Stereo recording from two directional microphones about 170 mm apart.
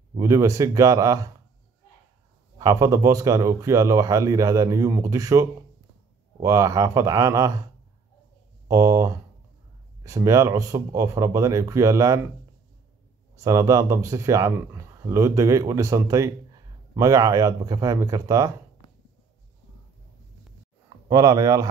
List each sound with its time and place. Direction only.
0.2 s speech: 20° right (ahead or behind)
2.6 s speech: 20° right (ahead or behind)
8.6 s speech: 20° right (ahead or behind)
13.4 s speech: 20° right (ahead or behind)
21.1 s speech: 20° right (ahead or behind)